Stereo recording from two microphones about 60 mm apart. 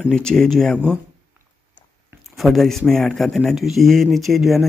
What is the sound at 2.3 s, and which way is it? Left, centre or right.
Speech, centre.